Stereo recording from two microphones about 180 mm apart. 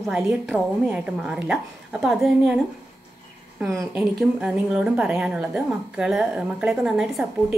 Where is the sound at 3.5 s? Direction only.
15° right (ahead or behind).